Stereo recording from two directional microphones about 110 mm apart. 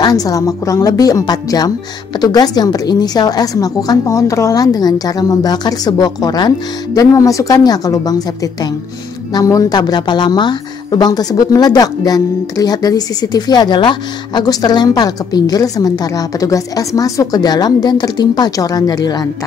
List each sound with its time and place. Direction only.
0.0 s a woman's voice: 35° left (ahead or behind)